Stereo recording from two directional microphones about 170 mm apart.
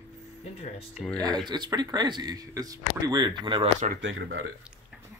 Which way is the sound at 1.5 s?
25° right (ahead or behind).